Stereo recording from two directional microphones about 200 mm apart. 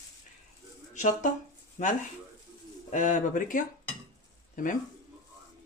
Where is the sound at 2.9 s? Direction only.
40° left (ahead or behind).